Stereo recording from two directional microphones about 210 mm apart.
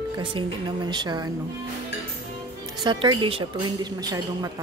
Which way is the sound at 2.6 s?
20° right (ahead or behind).